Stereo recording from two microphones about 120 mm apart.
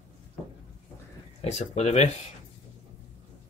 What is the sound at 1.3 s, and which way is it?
Speech, 65° left (ahead or behind).